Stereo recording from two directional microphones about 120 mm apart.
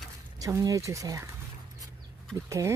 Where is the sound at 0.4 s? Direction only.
25° right (ahead or behind).